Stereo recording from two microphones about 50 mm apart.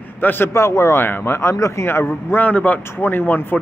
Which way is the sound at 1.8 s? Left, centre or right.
Left.